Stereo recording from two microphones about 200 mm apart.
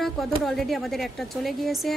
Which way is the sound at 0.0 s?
Centre (ahead or behind).